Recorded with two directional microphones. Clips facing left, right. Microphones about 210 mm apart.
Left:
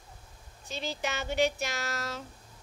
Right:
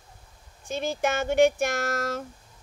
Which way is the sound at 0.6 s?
50° right (ahead or behind).